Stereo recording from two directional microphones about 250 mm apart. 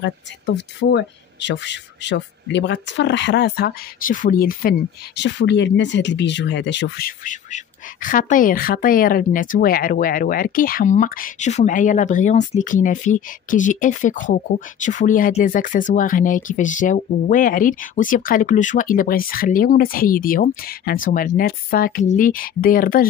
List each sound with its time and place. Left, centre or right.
0.6 s speech: left